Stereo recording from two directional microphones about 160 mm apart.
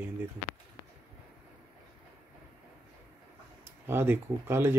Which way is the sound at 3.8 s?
15° right (ahead or behind).